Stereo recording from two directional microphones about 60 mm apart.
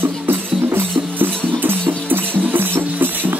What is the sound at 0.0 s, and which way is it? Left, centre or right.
Music, right.